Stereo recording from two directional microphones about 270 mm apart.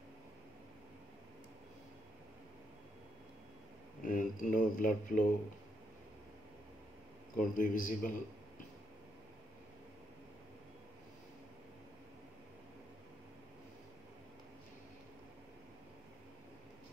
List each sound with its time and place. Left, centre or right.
4.0 s speech: left
7.3 s speech: left